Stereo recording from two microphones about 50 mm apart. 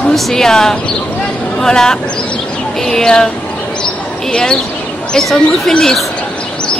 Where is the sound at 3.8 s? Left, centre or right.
Centre.